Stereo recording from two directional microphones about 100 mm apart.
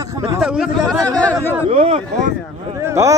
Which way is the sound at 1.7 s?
90° right.